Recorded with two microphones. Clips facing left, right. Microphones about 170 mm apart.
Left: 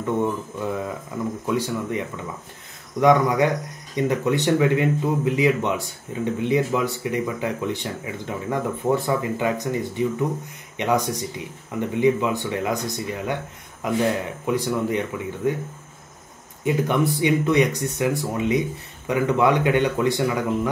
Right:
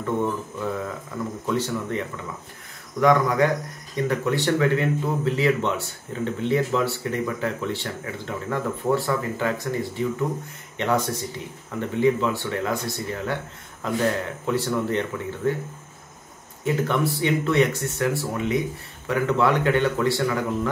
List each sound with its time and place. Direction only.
0.0 s speech: 15° left (ahead or behind)
16.6 s speech: 20° left (ahead or behind)